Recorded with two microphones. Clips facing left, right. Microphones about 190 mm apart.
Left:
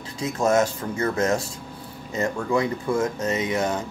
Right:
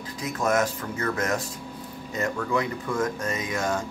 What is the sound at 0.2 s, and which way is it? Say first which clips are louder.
Speech: left 4 dB; 25° left (ahead or behind).